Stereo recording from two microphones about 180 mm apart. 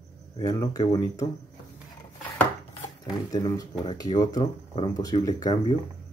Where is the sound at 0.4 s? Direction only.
20° left (ahead or behind).